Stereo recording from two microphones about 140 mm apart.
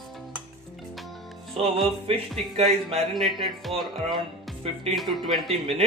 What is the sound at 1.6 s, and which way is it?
Music, 45° right (ahead or behind).